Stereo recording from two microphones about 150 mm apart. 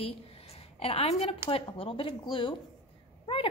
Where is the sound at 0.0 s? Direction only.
40° left (ahead or behind).